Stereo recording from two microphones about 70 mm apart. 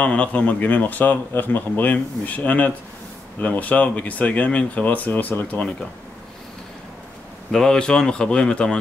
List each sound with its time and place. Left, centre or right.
0.0 s speech: centre
7.5 s speech: centre